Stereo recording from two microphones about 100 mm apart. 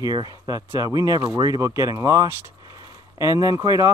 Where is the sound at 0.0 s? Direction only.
40° right (ahead or behind).